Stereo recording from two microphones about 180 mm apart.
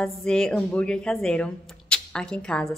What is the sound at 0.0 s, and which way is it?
Speech, 5° left (ahead or behind).